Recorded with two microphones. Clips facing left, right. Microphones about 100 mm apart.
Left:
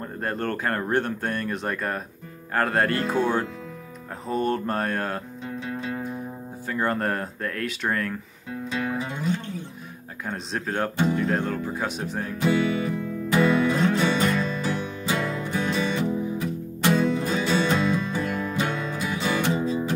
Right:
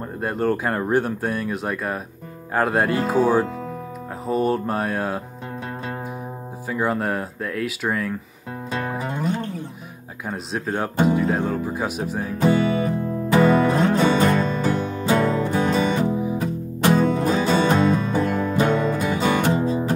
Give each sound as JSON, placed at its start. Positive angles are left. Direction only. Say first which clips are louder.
{"t": 0.0, "sound": "speech", "louder": "right 5 dB", "side_deg": -10}
{"t": 4.3, "sound": "mantra", "louder": "right 4 dB", "side_deg": -5}
{"t": 6.7, "sound": "speech", "louder": "right 2 dB", "side_deg": -5}
{"t": 8.7, "sound": "music", "louder": "right 2 dB", "side_deg": -45}
{"t": 10.2, "sound": "speech", "louder": "right 3 dB", "side_deg": -5}
{"t": 12.4, "sound": "music", "louder": "right 4 dB", "side_deg": -40}